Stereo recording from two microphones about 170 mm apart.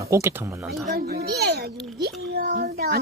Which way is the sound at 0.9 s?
65° right (ahead or behind).